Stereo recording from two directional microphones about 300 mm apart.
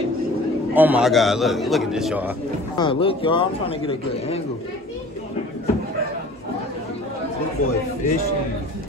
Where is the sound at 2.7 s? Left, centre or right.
Centre.